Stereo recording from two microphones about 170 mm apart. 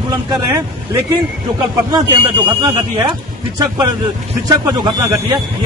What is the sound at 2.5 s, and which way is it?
Speech, 20° right (ahead or behind).